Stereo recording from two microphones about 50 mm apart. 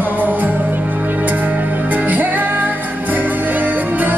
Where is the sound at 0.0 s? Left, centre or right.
Right.